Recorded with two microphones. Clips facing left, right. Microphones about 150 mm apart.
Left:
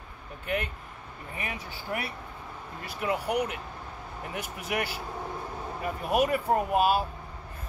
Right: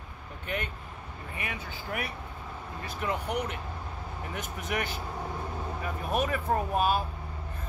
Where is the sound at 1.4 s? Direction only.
30° left (ahead or behind).